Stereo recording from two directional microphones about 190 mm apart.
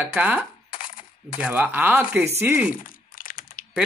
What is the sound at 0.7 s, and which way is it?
Coin, 45° left (ahead or behind).